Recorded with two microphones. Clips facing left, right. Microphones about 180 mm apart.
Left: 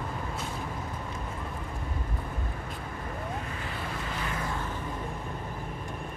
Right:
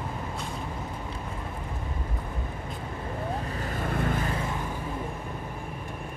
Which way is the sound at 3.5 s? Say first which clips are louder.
Right 6 dB; 45° right (ahead or behind).